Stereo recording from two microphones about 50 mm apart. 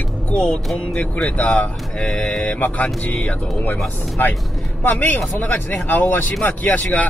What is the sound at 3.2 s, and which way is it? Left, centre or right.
Speech, left.